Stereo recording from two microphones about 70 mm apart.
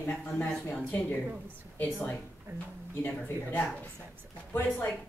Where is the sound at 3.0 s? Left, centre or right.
Left.